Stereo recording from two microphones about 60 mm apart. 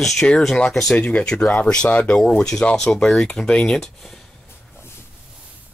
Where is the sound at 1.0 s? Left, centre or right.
Left; by 4.2 s centre.